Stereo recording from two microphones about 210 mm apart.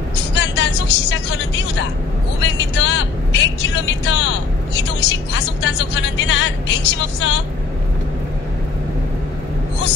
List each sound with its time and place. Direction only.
0.3 s vehicle: 60° left (ahead or behind)
2.4 s a woman's voice: 60° left (ahead or behind)